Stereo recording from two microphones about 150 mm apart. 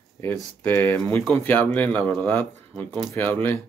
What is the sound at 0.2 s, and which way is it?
Speech, 15° left (ahead or behind).